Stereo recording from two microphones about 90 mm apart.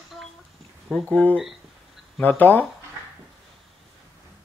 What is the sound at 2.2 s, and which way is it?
Speech, 20° left (ahead or behind).